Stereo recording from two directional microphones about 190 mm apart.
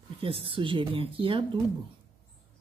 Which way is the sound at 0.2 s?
30° right (ahead or behind).